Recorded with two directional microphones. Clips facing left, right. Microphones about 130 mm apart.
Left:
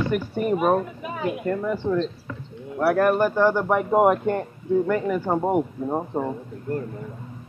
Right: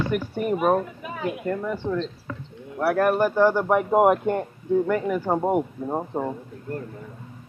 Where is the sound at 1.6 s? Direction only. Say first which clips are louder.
Left 3 dB; 5° left (ahead or behind).